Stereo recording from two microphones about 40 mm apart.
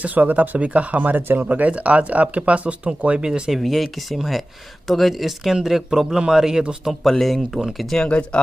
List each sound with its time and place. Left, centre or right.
0.0 s speech: right
3.3 s speech: centre
3.5 s speech: centre
5.2 s speech: centre
6.8 s speech: centre
8.1 s speech: left